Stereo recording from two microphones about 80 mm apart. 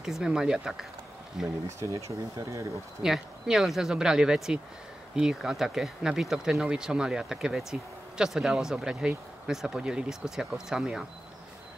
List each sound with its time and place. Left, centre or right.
0.0 s speech: centre
1.8 s speech: right
3.0 s speech: centre